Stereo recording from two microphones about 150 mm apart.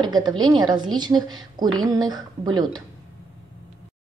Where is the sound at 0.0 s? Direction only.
30° right (ahead or behind).